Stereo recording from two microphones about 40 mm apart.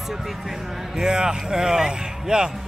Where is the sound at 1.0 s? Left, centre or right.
Right.